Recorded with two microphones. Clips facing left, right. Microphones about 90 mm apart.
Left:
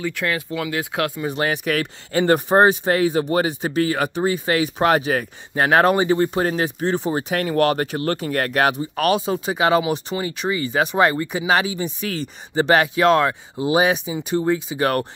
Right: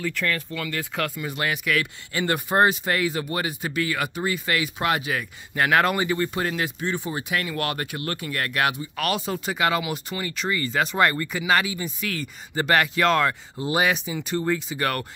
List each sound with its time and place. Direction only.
0.0 s speech: 5° left (ahead or behind)
1.1 s speech: 30° left (ahead or behind)
6.4 s speech: 40° left (ahead or behind)
9.2 s speech: 25° left (ahead or behind)